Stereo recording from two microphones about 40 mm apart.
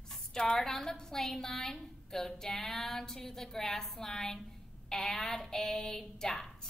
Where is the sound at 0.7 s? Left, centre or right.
Centre.